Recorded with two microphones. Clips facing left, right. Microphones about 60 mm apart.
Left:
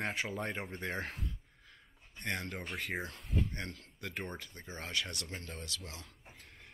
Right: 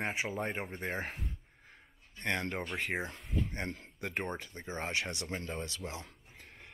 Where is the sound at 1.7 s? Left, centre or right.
Right.